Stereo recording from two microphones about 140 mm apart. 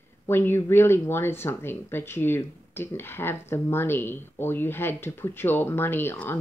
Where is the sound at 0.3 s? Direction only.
15° left (ahead or behind).